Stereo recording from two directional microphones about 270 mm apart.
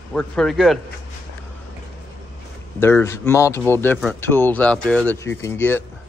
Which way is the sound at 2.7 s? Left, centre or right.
Centre.